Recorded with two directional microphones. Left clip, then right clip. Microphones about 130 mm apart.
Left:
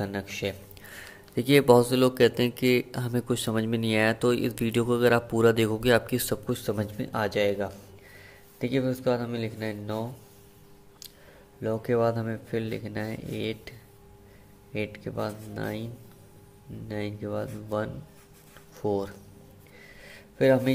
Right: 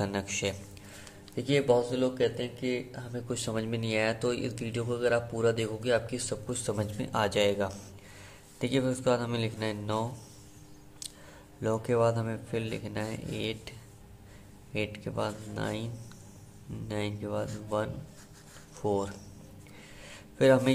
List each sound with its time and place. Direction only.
0.0 s a man's voice: 15° left (ahead or behind)
0.8 s a sound: 40° left (ahead or behind)
1.8 s speech: 75° left (ahead or behind)
3.3 s speech: 35° left (ahead or behind)
6.5 s a man's voice: 25° left (ahead or behind)
11.6 s a man's voice: 5° left (ahead or behind)
11.9 s a man's voice: 20° left (ahead or behind)
20.0 s a sound: 15° left (ahead or behind)